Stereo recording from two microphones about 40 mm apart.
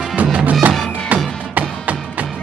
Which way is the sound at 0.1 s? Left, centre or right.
Right.